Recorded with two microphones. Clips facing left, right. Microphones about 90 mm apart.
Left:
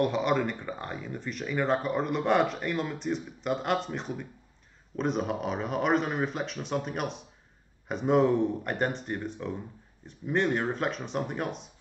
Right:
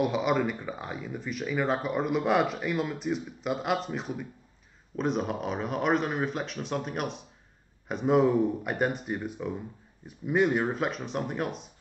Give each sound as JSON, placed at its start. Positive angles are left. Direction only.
{"t": 0.0, "sound": "speech", "side_deg": -5}